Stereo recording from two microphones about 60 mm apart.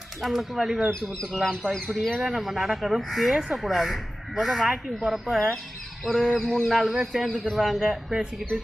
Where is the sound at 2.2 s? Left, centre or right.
Centre.